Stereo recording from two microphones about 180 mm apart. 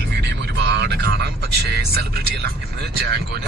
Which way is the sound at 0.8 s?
70° right (ahead or behind).